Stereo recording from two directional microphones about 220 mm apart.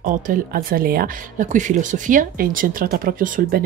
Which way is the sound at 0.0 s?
40° right (ahead or behind).